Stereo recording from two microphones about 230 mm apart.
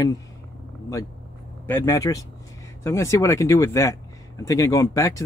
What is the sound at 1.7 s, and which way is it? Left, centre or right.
Speech, centre.